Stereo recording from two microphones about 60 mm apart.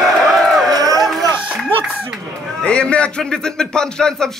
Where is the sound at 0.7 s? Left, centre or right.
Right.